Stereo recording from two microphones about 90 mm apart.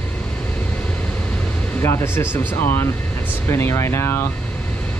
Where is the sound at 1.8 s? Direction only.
30° left (ahead or behind).